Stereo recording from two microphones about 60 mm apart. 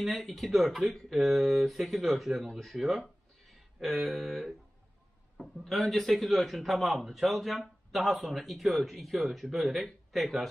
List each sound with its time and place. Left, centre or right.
0.0 s a man's voice: centre